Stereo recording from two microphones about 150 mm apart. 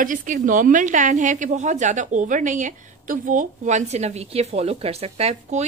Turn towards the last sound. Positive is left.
turn(degrees=-45)  # may be behind; listen again after turning